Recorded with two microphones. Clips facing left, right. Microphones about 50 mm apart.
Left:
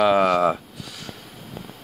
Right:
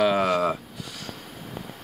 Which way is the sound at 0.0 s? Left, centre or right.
Centre.